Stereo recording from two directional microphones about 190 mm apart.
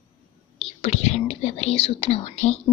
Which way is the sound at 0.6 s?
30° left (ahead or behind).